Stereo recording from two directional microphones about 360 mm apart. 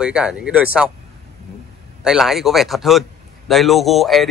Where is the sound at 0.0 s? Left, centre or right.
Centre.